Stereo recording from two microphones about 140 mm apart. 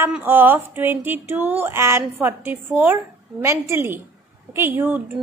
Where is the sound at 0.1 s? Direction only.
15° right (ahead or behind).